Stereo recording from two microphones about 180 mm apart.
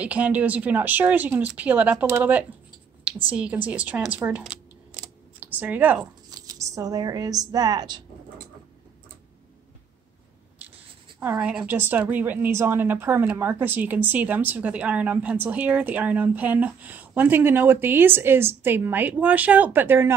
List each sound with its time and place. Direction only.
0.0 s a woman's voice: 10° right (ahead or behind)
6.3 s a woman's voice: 20° right (ahead or behind)
11.1 s a woman's voice: 5° right (ahead or behind)